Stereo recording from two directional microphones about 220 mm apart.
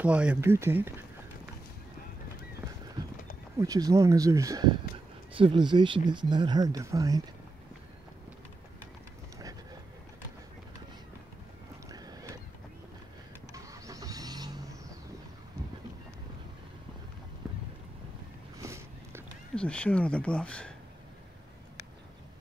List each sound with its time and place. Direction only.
0.0 s speech: 5° right (ahead or behind)
3.5 s speech: 15° right (ahead or behind)
11.9 s boat: 15° right (ahead or behind)
13.5 s vehicle: 15° right (ahead or behind)
18.6 s a sound: 15° right (ahead or behind)
19.5 s speech: 5° left (ahead or behind)